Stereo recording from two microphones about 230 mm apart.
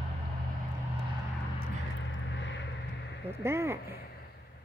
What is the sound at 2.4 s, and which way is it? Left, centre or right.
Vehicle, left.